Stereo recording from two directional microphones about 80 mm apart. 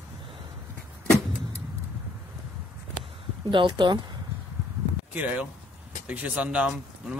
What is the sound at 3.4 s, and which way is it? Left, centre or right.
Speech, right.